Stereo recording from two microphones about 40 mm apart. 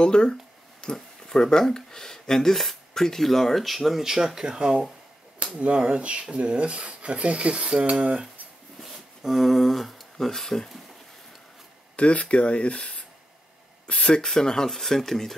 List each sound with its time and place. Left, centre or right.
0.0 s a sound: left
1.2 s speech: centre
4.4 s speech: centre
8.8 s a sound: centre
10.1 s speech: centre
12.0 s speech: left
14.2 s speech: centre